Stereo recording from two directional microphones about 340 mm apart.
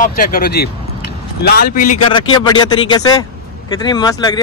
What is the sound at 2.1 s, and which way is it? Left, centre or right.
Speech, centre.